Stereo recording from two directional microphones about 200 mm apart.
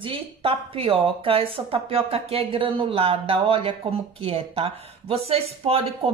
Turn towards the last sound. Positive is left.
turn(degrees=-30)  # may be behind; listen again after turning